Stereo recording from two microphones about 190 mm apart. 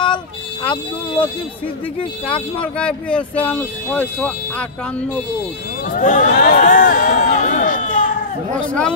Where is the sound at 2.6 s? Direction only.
5° left (ahead or behind).